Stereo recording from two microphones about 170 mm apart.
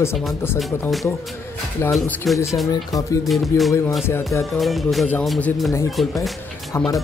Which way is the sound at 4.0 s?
15° left (ahead or behind).